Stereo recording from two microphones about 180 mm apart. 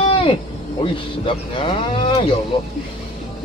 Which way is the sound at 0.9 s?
30° left (ahead or behind).